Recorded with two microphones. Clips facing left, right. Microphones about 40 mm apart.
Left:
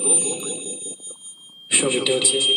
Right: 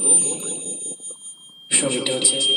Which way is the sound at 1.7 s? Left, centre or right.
Left.